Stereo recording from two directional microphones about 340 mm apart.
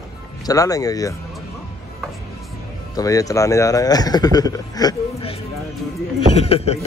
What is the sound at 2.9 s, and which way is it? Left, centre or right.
A man's voice, centre.